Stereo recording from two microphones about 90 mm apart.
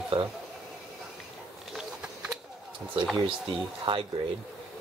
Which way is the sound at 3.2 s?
80° right.